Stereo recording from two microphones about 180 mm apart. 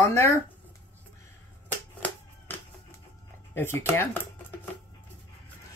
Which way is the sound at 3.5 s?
10° left (ahead or behind).